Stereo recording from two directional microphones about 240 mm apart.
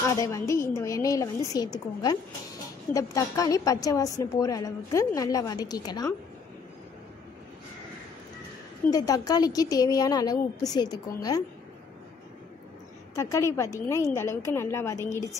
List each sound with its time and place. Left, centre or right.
0.0 s a woman's voice: centre
8.9 s a woman's voice: centre
13.1 s a woman's voice: centre